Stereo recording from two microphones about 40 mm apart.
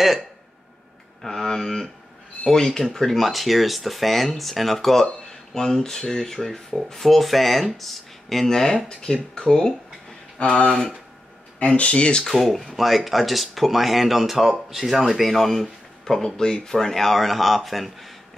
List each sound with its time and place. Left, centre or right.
1.2 s speech: centre
10.7 s speech: centre
11.6 s speech: left
12.3 s speech: centre
16.2 s speech: centre